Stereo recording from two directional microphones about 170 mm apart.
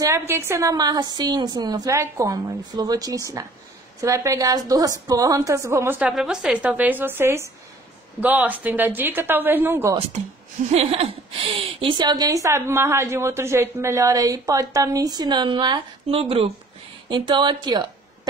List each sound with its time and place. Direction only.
0.3 s a woman's voice: 15° right (ahead or behind)
10.7 s a woman's voice: 35° right (ahead or behind)